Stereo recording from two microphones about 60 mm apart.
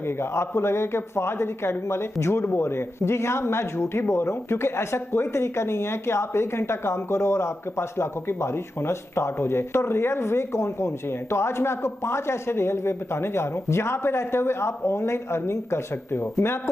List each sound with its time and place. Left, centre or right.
0.2 s speech: left